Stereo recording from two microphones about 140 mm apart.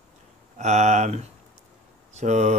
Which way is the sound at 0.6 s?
55° right (ahead or behind).